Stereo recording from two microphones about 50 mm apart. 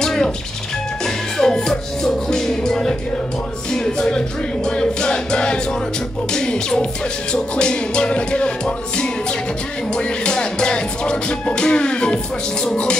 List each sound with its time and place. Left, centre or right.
0.0 s music: centre